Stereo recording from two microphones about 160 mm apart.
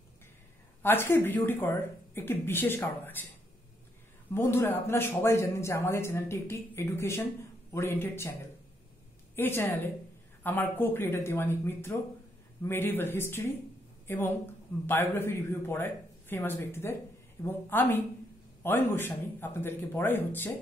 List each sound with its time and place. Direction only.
0.8 s speech: 15° left (ahead or behind)
4.3 s a woman's voice: 15° left (ahead or behind)